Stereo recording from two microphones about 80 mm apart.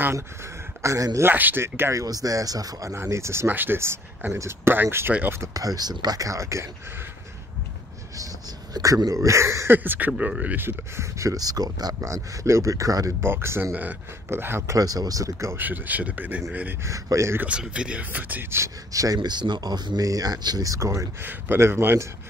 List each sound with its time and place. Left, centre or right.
0.8 s speech: right
1.2 s speech: right
2.0 s speech: right
5.5 s speech: right
8.7 s speech: right
9.8 s speech: right
12.1 s speech: right
13.2 s speech: right
14.8 s speech: right
15.5 s speech: right
16.8 s speech: right
17.4 s speech: centre; by 18.7 s right
18.9 s speech: right
21.2 s speech: right